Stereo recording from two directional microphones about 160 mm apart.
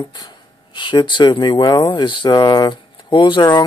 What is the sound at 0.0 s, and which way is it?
Speech, 30° left (ahead or behind).